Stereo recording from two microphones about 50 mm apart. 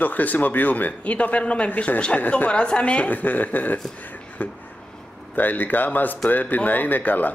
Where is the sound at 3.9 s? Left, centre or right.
Left.